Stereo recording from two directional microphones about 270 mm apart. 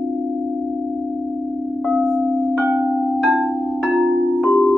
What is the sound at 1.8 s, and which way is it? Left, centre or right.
Singing bowl, centre.